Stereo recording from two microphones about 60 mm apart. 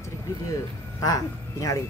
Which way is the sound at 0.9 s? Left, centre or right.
Left.